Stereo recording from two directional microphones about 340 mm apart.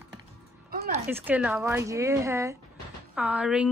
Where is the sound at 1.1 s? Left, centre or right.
Centre.